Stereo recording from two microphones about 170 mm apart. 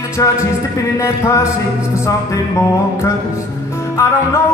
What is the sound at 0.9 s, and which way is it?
Music, 15° left (ahead or behind).